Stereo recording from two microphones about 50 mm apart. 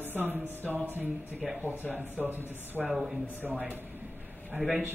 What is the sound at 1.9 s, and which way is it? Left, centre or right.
Speech, right.